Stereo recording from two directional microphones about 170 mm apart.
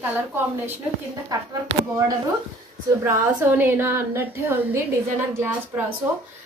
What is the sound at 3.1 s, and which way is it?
A woman's voice, 15° right (ahead or behind).